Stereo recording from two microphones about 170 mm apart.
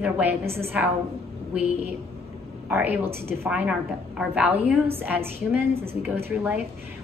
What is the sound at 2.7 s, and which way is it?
A woman's voice, 10° right (ahead or behind).